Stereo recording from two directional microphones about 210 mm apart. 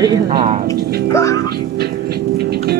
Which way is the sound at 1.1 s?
15° left (ahead or behind).